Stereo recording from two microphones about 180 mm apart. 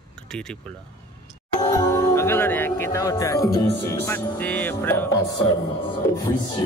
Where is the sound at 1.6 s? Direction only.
15° left (ahead or behind).